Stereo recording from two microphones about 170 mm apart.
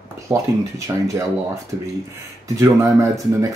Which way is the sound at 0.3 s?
20° right (ahead or behind).